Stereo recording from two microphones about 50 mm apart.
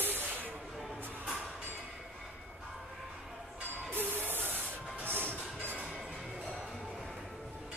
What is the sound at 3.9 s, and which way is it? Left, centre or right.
Music, right.